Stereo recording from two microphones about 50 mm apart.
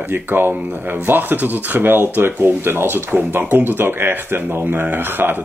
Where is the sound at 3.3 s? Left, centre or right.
Right.